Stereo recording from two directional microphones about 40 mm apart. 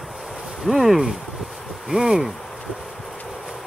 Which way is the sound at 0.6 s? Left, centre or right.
Centre.